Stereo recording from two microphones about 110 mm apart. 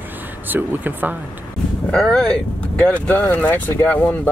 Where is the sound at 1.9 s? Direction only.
5° left (ahead or behind).